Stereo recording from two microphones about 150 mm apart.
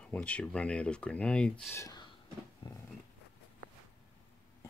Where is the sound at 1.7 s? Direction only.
25° left (ahead or behind).